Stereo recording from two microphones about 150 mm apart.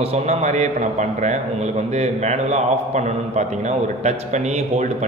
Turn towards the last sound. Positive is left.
turn(degrees=-50)  # may be behind; listen again after turning